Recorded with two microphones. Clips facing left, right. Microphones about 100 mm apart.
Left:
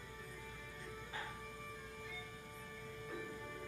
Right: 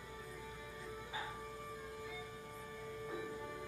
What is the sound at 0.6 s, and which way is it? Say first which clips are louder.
Music: right 3 dB; 10° right (ahead or behind).